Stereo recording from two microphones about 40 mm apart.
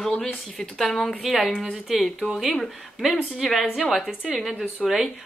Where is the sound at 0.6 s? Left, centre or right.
Centre.